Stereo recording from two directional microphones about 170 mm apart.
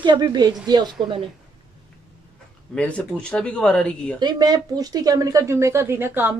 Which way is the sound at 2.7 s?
5° left (ahead or behind).